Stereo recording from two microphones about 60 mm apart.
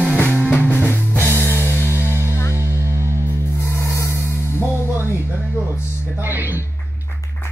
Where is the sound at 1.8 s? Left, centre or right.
Right.